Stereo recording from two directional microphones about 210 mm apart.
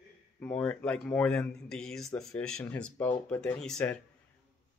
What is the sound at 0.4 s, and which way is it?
Speech, 5° left (ahead or behind).